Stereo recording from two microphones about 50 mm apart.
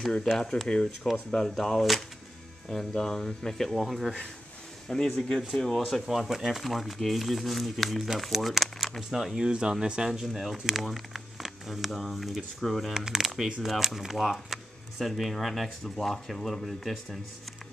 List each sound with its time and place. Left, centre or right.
0.3 s speech: centre
1.8 s speech: centre
4.8 s speech: centre
6.0 s speech: centre
9.4 s speech: centre
10.2 s speech: centre
12.9 s speech: centre